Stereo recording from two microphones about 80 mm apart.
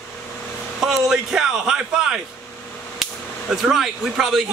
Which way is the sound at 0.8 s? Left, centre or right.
Centre.